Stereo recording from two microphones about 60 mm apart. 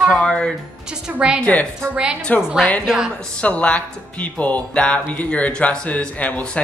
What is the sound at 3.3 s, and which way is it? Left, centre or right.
Speech, left.